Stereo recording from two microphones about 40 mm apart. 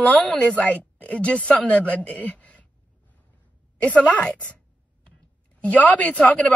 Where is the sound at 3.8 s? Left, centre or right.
Left.